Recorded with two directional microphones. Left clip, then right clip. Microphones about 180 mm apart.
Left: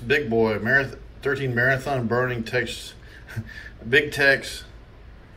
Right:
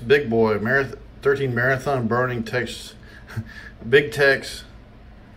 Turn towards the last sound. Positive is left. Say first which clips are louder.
# right 1 dB
turn(degrees=-20)  # may be behind; listen again after turning